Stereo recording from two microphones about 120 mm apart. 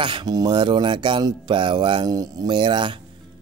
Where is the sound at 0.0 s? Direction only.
40° right (ahead or behind).